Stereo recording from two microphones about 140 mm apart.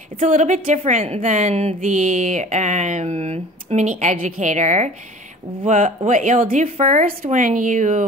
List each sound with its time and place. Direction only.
0.2 s a woman's voice: 60° right (ahead or behind)